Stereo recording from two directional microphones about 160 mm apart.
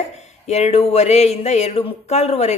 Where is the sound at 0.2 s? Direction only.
45° left (ahead or behind).